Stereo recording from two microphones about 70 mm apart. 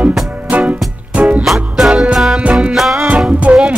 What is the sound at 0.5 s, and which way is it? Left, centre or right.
Music, right.